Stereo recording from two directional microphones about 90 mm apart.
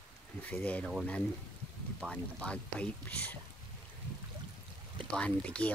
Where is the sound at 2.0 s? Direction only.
10° left (ahead or behind).